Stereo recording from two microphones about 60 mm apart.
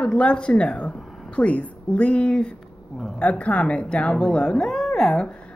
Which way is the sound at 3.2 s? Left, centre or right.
Left.